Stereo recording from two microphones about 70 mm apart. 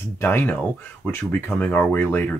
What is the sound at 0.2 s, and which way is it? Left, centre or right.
Speech, left.